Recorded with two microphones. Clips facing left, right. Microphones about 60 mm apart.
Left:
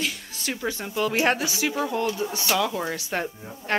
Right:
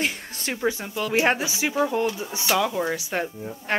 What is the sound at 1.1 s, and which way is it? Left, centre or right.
Speech, centre.